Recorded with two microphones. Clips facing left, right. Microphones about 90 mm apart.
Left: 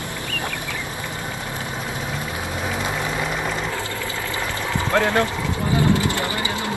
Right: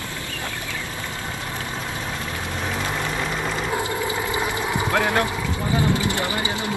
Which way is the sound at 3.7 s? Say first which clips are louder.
Right 3 dB; 20° right (ahead or behind).